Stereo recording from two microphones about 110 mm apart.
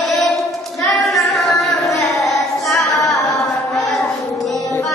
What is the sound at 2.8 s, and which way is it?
Singing, 30° left (ahead or behind).